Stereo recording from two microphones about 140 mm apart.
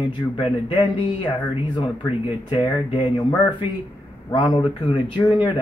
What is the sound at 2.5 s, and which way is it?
Speech, 35° left (ahead or behind).